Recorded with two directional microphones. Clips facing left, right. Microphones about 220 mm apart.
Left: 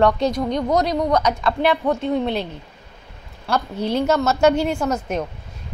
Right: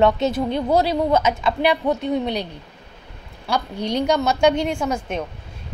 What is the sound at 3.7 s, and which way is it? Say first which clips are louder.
A woman's voice: left 1 dB; 5° left (ahead or behind).